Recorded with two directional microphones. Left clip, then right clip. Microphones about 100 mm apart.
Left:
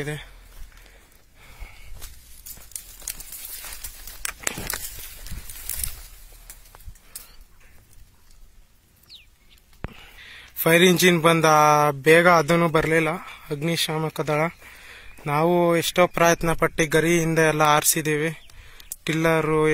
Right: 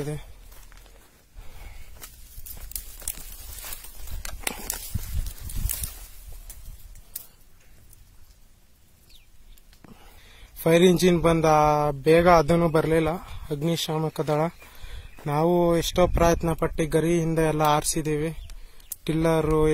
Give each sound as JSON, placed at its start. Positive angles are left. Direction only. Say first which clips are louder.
{"t": 10.3, "sound": "a sound", "louder": "left 2 dB", "side_deg": -15}
{"t": 10.8, "sound": "speech", "louder": "left 3 dB", "side_deg": -5}
{"t": 12.4, "sound": "speech", "louder": "left 2 dB", "side_deg": -15}
{"t": 16.2, "sound": "speech", "louder": "left 3 dB", "side_deg": -5}
{"t": 18.9, "sound": "a sound", "louder": "left 2 dB", "side_deg": -5}
{"t": 19.2, "sound": "speech", "louder": "left 2 dB", "side_deg": -20}